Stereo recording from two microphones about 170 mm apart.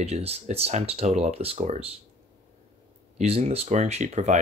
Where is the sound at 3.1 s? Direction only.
35° right (ahead or behind).